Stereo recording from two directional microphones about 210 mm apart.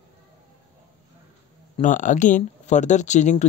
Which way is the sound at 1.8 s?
35° left (ahead or behind).